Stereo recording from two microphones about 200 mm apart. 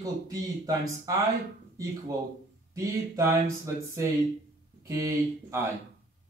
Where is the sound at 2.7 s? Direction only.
15° right (ahead or behind).